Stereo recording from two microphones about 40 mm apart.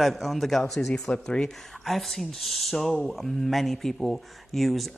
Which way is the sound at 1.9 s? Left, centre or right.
Centre.